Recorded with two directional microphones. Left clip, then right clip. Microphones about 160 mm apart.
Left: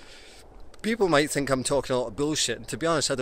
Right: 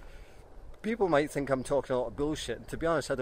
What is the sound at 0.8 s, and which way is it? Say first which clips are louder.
Speech: left 5 dB; 5° left (ahead or behind).